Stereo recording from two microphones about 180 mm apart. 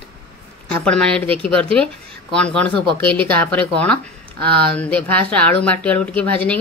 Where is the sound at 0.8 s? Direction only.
5° left (ahead or behind).